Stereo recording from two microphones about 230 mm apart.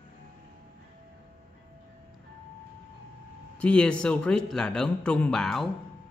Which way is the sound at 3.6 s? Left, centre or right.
Centre.